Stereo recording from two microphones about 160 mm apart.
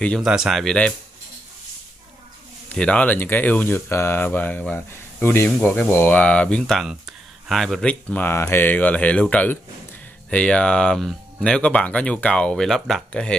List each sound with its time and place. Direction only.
0.2 s speech: 5° right (ahead or behind)
2.7 s speech: 5° left (ahead or behind)